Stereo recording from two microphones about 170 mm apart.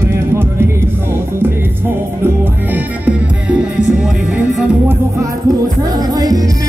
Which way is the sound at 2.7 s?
10° right (ahead or behind).